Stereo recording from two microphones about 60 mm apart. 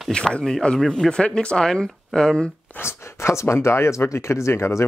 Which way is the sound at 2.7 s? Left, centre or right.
Left.